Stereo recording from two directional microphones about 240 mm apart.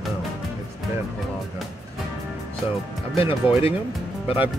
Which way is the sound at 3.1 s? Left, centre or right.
Left.